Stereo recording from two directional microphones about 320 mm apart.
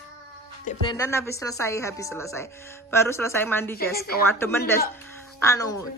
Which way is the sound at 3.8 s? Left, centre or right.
Left.